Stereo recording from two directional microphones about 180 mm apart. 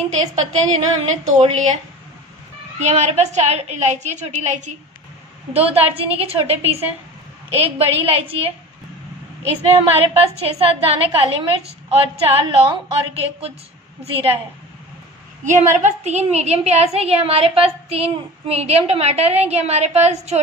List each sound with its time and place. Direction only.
0.1 s a woman's voice: 40° right (ahead or behind)
2.8 s a woman's voice: 40° right (ahead or behind)
9.7 s a woman's voice: 35° right (ahead or behind)
15.4 s a woman's voice: 40° right (ahead or behind)